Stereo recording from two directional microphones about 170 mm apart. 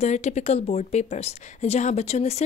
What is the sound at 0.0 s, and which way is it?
A woman's voice, 40° left (ahead or behind).